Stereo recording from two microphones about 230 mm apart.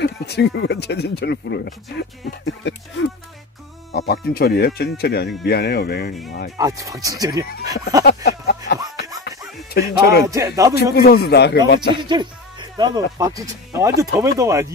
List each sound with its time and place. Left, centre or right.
0.0 s speech: left
6.6 s speech: centre
8.0 s a sound: left
9.7 s speech: left
10.2 s speech: centre
10.8 s speech: left
12.0 s speech: centre